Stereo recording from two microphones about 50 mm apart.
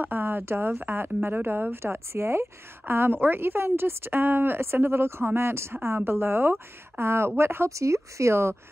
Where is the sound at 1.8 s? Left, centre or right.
Right.